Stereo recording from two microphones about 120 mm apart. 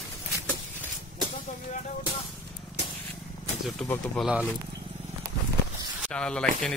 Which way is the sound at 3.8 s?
5° left (ahead or behind).